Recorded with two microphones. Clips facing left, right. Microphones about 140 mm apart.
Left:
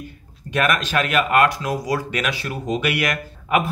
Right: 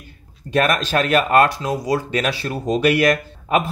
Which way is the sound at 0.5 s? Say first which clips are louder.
Right 3 dB; 35° right (ahead or behind).